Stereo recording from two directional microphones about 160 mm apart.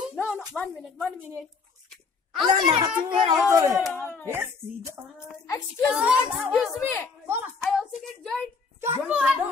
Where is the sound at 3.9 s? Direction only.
10° left (ahead or behind).